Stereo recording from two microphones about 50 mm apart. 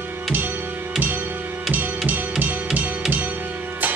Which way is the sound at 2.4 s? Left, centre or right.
Right.